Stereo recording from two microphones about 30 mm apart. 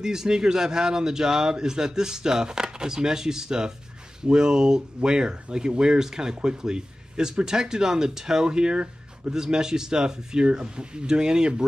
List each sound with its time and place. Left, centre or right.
0.0 s speech: centre